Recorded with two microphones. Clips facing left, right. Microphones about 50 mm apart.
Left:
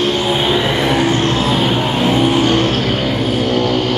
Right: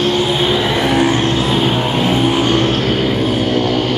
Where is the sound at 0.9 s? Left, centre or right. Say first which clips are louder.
Right 1 dB; right.